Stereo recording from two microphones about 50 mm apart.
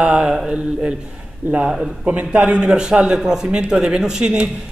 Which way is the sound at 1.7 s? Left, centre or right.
Centre.